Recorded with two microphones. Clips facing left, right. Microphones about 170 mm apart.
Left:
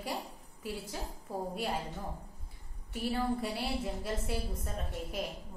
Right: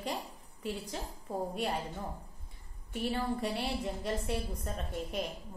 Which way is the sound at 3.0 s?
5° left (ahead or behind).